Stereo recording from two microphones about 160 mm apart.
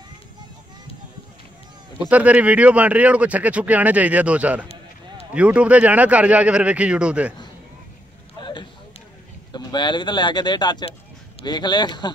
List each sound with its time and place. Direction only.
2.0 s speech: 10° right (ahead or behind)
8.4 s a sound: 30° left (ahead or behind)
9.5 s speech: 25° left (ahead or behind)